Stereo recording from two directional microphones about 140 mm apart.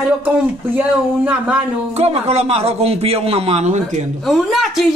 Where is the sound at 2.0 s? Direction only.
50° right (ahead or behind).